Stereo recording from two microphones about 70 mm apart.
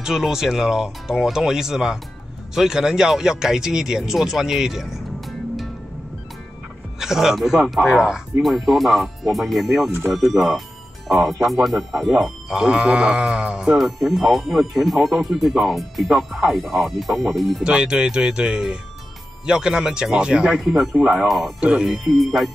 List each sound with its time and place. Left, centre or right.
0.0 s speech: centre
7.0 s speech: centre
13.7 s speech: centre
17.6 s speech: centre
20.9 s speech: centre
21.3 s speech: centre